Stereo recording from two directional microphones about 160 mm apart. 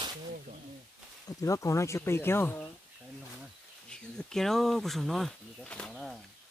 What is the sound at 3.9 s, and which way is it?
Speech, 5° left (ahead or behind).